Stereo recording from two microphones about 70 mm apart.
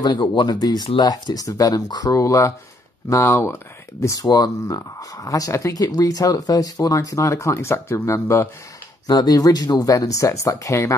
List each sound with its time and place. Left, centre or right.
0.0 s speech: left
3.3 s speech: left
4.0 s speech: left
9.0 s speech: left